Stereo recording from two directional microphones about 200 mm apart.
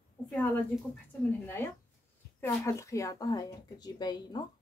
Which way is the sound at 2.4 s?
15° left (ahead or behind).